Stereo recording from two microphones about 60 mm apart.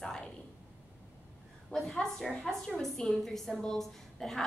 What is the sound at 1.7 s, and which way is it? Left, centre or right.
A woman's voice, centre.